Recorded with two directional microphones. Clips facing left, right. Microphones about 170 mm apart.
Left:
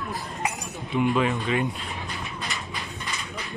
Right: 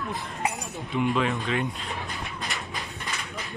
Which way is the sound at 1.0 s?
Centre (ahead or behind).